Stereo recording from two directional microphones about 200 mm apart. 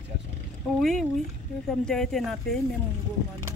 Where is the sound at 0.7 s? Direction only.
Centre (ahead or behind).